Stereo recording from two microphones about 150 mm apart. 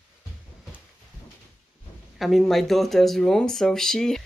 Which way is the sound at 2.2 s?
Centre (ahead or behind).